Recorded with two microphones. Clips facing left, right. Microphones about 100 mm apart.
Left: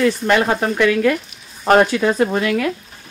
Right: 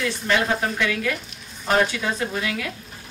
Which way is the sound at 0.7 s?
60° left (ahead or behind).